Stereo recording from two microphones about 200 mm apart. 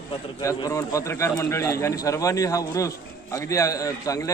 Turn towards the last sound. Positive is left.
turn(degrees=15)  # may be behind; listen again after turning